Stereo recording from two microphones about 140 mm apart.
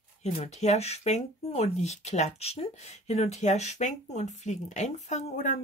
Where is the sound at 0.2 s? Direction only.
50° left (ahead or behind).